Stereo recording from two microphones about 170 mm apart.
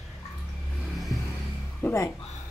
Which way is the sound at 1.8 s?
15° left (ahead or behind).